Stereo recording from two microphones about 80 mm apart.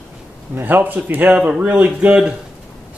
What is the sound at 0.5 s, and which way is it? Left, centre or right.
Speech, right.